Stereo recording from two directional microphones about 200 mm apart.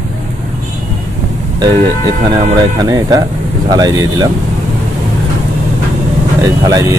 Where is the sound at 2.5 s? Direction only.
20° right (ahead or behind).